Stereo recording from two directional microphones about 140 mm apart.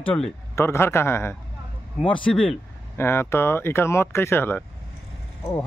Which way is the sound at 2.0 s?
35° left (ahead or behind).